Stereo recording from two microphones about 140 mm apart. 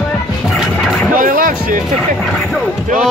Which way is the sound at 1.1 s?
75° right (ahead or behind).